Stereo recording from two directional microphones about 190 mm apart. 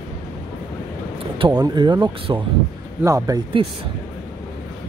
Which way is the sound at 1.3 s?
25° right (ahead or behind).